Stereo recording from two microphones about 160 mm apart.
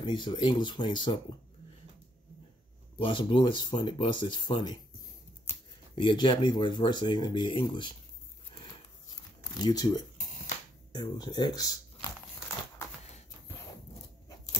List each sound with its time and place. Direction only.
0.0 s speech: 30° left (ahead or behind)
3.0 s speech: 30° left (ahead or behind)
5.9 s speech: 30° left (ahead or behind)
9.4 s speech: 25° left (ahead or behind)